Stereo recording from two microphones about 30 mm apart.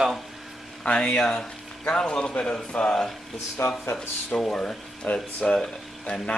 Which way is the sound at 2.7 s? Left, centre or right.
Left.